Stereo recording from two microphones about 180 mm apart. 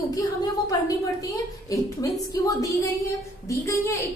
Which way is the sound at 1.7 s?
20° left (ahead or behind).